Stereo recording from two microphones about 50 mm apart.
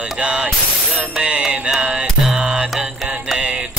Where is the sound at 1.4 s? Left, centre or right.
Centre.